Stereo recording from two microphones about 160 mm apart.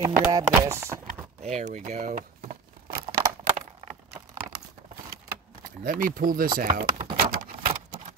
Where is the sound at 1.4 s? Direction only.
45° right (ahead or behind).